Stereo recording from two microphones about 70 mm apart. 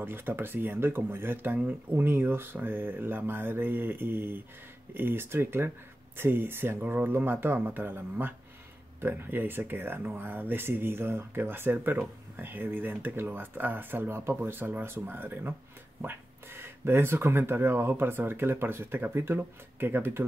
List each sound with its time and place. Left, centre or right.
0.0 s speech: right